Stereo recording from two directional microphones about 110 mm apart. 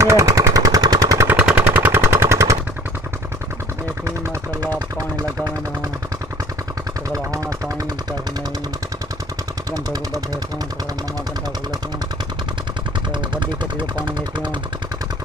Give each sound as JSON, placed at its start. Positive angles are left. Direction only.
{"t": 0.0, "sound": "machine gun", "side_deg": -25}
{"t": 1.2, "sound": "machine gun", "side_deg": -15}
{"t": 7.1, "sound": "vehicle", "side_deg": -30}
{"t": 9.7, "sound": "vehicle", "side_deg": -30}
{"t": 13.3, "sound": "vehicle", "side_deg": -45}